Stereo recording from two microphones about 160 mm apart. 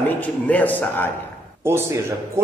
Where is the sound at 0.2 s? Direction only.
10° left (ahead or behind).